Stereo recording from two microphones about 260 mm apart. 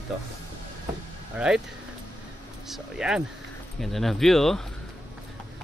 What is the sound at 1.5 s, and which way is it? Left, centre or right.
Speech, centre.